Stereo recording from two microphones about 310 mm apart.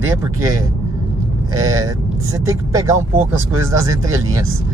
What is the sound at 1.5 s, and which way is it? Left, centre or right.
Speech, centre.